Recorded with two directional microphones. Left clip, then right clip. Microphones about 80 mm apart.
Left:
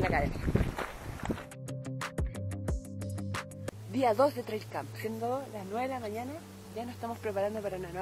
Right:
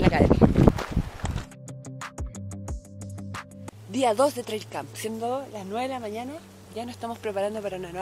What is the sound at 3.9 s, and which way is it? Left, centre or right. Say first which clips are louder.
Speech: right 5 dB; right.